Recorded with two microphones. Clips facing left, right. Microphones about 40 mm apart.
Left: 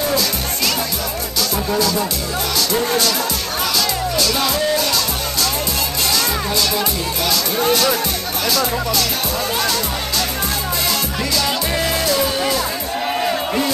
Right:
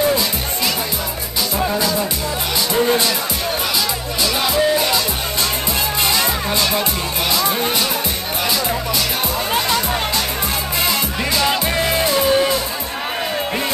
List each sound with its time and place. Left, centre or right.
1.8 s speech: right
4.2 s music: centre
7.2 s speech: right
9.6 s speech: right
10.9 s music: right